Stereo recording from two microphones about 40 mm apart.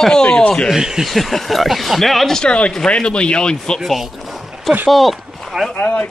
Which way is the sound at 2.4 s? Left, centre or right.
Left.